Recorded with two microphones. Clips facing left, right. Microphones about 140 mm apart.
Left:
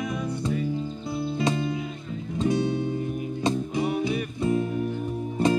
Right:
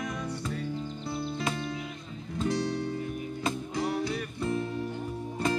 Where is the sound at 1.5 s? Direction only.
15° left (ahead or behind).